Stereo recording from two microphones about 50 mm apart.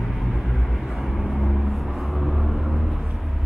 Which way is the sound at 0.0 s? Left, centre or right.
Centre.